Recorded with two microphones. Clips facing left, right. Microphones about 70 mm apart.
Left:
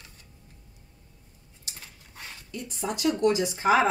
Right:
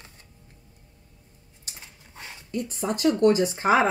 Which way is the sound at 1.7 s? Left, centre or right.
Right.